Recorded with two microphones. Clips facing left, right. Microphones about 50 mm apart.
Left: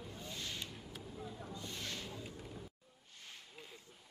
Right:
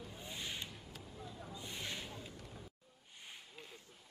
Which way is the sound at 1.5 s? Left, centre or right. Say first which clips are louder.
Right 2 dB; centre.